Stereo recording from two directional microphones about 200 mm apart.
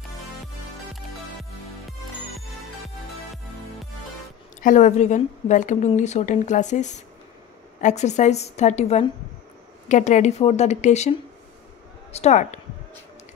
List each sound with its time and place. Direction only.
4.6 s a woman's voice: 40° left (ahead or behind)